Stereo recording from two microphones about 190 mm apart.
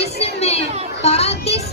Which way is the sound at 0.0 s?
35° left (ahead or behind).